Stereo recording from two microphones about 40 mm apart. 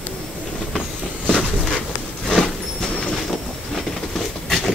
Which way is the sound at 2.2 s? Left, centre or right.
Centre.